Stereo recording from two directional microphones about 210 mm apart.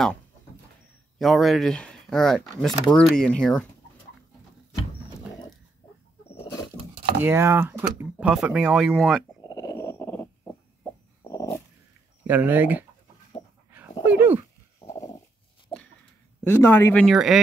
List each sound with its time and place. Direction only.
1.1 s speech: centre (ahead or behind)
6.2 s roaring cats: 25° left (ahead or behind)
7.2 s speech: 10° right (ahead or behind)
9.4 s dog: 20° left (ahead or behind)
12.3 s speech: 10° right (ahead or behind)
13.7 s dog: 10° right (ahead or behind)
14.8 s dog: 15° left (ahead or behind)
16.4 s speech: 10° left (ahead or behind)